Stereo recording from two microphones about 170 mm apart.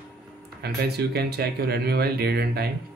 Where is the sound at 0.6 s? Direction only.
70° right (ahead or behind).